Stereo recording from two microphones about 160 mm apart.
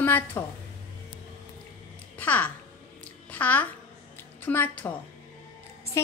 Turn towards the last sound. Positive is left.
turn(degrees=15)  # may be behind; listen again after turning